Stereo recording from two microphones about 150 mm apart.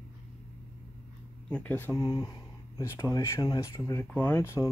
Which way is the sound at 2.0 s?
25° left (ahead or behind).